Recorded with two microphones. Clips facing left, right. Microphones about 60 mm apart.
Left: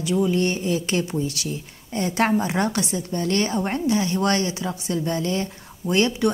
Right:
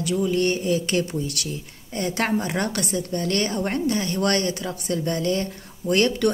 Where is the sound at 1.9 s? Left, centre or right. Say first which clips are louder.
Left 3 dB; left.